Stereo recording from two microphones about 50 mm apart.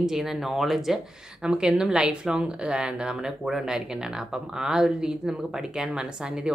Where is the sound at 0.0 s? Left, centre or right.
Centre.